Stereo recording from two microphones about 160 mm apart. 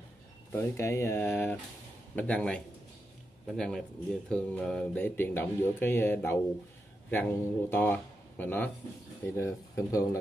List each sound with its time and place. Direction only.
0.5 s speech: 15° left (ahead or behind)